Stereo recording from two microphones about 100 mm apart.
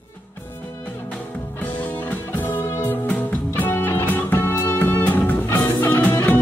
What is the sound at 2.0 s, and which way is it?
Music, 20° left (ahead or behind).